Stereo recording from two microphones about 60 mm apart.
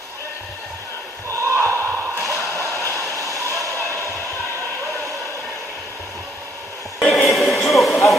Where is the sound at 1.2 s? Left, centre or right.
Right.